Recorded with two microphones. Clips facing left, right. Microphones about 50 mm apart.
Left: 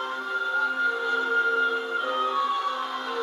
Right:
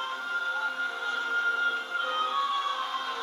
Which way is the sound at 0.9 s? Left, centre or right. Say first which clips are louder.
Left 6 dB; left.